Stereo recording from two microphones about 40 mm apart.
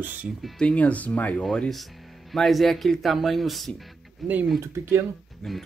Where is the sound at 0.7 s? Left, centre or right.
Left.